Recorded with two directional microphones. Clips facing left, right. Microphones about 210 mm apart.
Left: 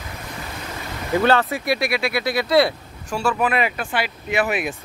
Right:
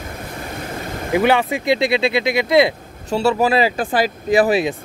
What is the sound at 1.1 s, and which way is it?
Speech, 15° right (ahead or behind).